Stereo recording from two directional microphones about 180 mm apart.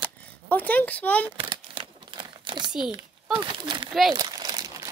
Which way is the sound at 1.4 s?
25° right (ahead or behind).